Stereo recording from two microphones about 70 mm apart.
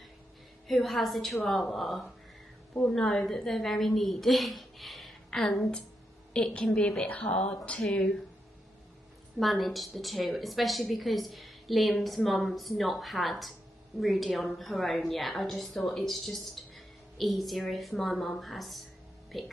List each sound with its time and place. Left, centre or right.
0.7 s a woman's voice: centre
9.4 s a woman's voice: centre